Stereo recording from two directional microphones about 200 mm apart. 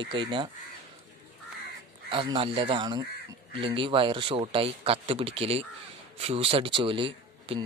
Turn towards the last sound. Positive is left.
turn(degrees=-25)  # may be behind; listen again after turning